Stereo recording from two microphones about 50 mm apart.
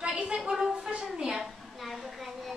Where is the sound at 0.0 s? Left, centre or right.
Right.